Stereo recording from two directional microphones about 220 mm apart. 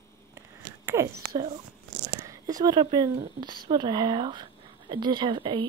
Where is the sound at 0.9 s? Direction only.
15° right (ahead or behind).